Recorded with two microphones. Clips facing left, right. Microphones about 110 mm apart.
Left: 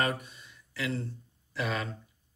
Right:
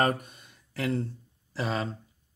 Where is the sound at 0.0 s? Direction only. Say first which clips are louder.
Right 5 dB; 45° right (ahead or behind).